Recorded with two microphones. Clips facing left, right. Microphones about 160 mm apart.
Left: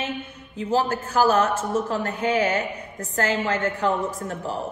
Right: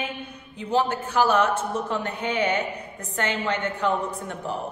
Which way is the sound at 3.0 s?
35° left (ahead or behind).